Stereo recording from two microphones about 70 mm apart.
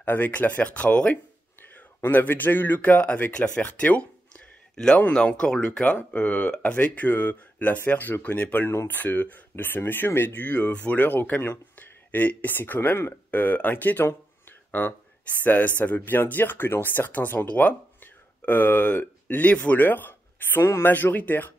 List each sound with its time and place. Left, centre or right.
0.0 s speech: left